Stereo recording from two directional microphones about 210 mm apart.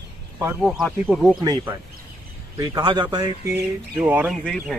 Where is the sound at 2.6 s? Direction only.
20° right (ahead or behind).